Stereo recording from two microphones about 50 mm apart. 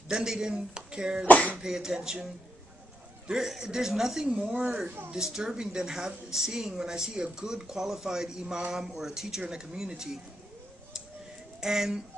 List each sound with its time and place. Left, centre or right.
0.1 s speech: centre
1.2 s speech: left
1.6 s speech: centre
3.3 s speech: centre
4.3 s a woman's voice: right
5.1 s speech: centre
11.6 s speech: centre